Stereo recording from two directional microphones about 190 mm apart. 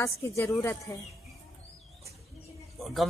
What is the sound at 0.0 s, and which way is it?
Speech, 15° left (ahead or behind).